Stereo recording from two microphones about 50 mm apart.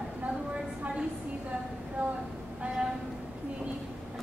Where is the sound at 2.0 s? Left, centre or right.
Right.